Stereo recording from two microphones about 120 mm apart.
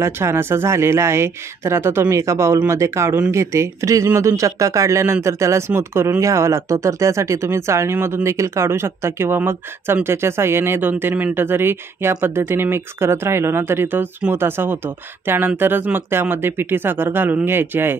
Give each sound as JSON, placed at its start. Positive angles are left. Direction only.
{"t": 0.0, "sound": "speech", "side_deg": -20}